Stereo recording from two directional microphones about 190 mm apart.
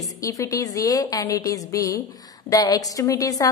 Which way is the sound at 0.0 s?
15° left (ahead or behind).